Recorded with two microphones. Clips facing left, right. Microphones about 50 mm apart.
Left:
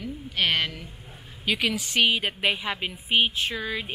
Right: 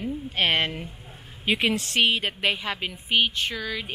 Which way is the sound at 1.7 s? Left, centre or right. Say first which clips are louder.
Even; centre.